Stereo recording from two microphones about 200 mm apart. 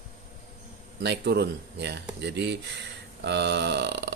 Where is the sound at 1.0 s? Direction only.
55° right (ahead or behind).